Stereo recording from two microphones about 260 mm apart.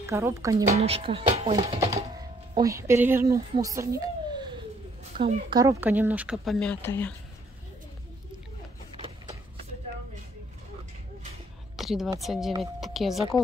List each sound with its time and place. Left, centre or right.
0.0 s a woman's voice: centre
2.5 s speech: centre
8.9 s printer: right
11.7 s a woman's voice: centre